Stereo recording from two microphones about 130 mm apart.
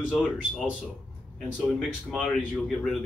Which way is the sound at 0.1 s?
Centre (ahead or behind).